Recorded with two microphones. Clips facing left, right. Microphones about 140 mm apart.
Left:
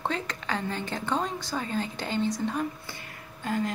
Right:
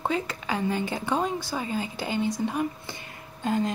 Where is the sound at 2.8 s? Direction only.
20° right (ahead or behind).